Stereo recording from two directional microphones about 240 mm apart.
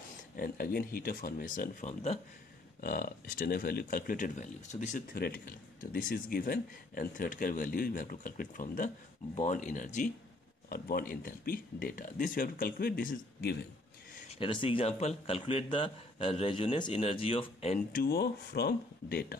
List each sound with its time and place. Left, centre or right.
0.4 s speech: left
14.4 s a man's voice: left